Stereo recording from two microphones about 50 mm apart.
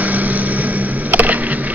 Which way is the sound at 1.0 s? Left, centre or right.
Right.